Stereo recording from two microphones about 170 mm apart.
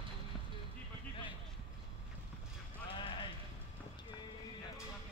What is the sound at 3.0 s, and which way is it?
Music, 30° left (ahead or behind).